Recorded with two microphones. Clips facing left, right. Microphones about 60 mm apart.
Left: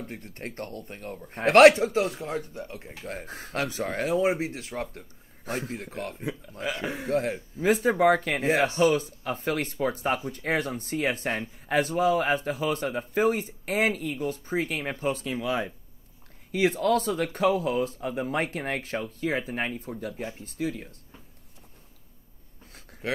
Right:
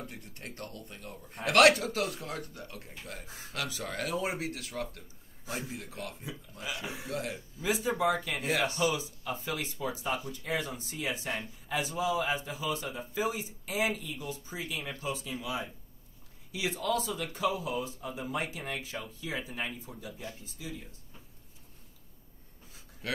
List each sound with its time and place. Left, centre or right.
0.0 s a man's voice: left
3.0 s a man's voice: left
5.4 s a man's voice: left
8.4 s speech: left
23.0 s speech: left